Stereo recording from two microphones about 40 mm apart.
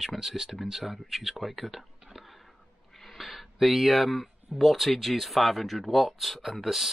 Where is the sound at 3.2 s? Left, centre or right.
Centre.